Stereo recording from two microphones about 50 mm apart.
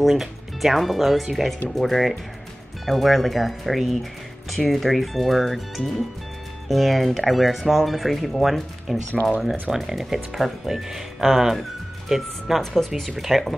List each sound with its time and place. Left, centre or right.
0.0 s speech: centre
9.1 s speech: left
9.4 s speech: centre